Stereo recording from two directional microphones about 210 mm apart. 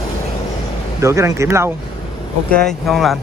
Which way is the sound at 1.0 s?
15° right (ahead or behind).